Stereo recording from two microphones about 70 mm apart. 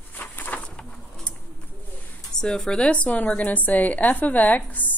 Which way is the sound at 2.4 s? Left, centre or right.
Centre.